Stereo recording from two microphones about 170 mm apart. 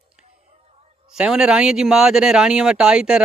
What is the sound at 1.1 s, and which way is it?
Speech, 5° right (ahead or behind).